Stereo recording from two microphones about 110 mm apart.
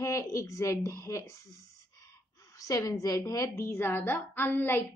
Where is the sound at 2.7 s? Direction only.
30° left (ahead or behind).